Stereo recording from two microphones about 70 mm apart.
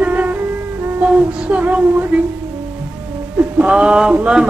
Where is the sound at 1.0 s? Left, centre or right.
Centre.